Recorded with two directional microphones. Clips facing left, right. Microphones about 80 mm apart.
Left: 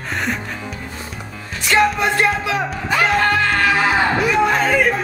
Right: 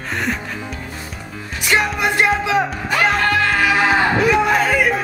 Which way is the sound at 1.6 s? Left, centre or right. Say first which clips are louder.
Left 2 dB; centre.